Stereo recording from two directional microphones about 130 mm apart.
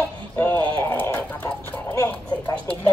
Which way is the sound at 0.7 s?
20° left (ahead or behind).